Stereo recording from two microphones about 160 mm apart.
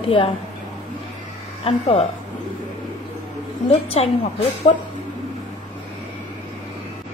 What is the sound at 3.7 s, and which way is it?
A woman's voice, 40° left (ahead or behind).